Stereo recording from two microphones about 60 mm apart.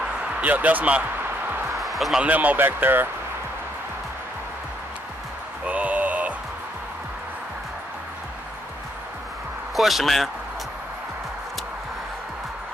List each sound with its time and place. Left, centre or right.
0.0 s basketball bounce: right
1.8 s basketball bounce: centre
2.2 s speech: right
5.7 s a sound: right
9.8 s speech: centre